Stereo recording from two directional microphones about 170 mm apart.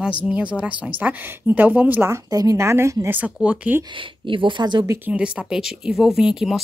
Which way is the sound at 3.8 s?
30° right (ahead or behind).